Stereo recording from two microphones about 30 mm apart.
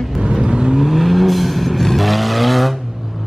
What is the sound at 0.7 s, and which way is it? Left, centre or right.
Vehicle, centre.